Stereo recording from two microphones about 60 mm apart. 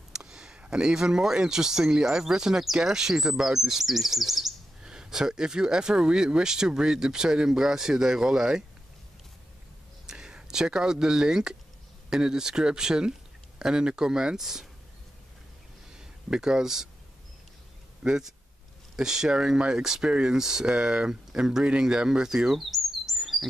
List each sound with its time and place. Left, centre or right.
0.1 s speech: centre
10.0 s speech: centre
15.9 s a sound: centre
18.0 s speech: centre